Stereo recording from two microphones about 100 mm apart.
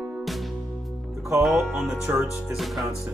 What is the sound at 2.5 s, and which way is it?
Music, centre (ahead or behind).